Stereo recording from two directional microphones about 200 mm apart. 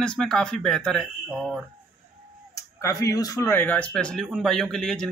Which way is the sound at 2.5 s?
15° left (ahead or behind).